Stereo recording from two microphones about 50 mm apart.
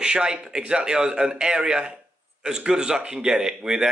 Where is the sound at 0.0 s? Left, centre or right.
Centre.